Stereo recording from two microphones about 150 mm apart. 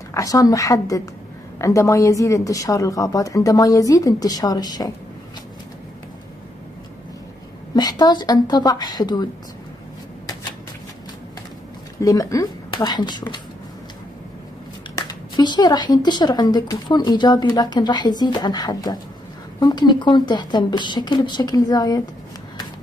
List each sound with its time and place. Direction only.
0.1 s speech: 20° left (ahead or behind)
7.7 s speech: 30° left (ahead or behind)
12.0 s speech: 20° left (ahead or behind)
15.0 s speech: 25° left (ahead or behind)